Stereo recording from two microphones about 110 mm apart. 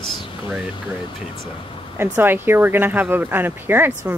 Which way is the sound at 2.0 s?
20° right (ahead or behind).